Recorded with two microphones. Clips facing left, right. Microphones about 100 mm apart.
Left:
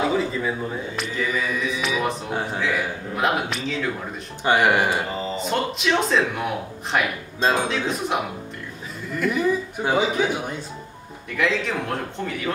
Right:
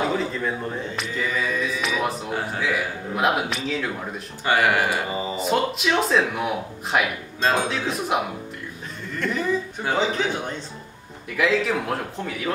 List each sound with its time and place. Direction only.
0.3 s speech: 5° left (ahead or behind)
4.5 s speech: 20° left (ahead or behind)
5.4 s speech: 5° right (ahead or behind)
9.2 s a man's voice: 10° left (ahead or behind)
11.2 s speech: 5° right (ahead or behind)